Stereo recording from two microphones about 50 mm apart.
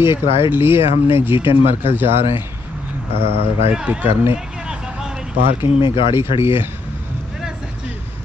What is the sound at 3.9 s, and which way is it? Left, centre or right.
Speech, right.